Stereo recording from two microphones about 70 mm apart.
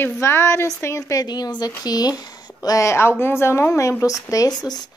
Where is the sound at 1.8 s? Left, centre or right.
Left.